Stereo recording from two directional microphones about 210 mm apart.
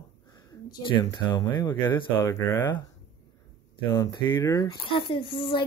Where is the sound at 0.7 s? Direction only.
20° left (ahead or behind).